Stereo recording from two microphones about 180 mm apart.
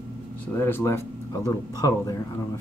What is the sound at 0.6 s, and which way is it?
Speech, 10° left (ahead or behind).